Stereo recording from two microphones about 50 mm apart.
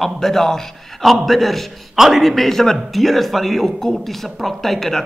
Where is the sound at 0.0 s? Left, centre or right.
Centre.